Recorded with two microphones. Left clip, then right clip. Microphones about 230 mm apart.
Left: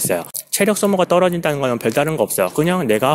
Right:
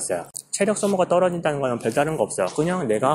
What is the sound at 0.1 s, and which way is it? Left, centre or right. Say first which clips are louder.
Speech: left 5 dB; left.